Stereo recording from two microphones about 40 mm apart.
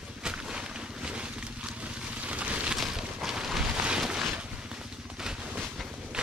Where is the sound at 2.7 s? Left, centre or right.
Centre.